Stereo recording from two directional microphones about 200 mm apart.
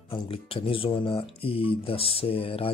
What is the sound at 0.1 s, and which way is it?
Speech, 25° left (ahead or behind).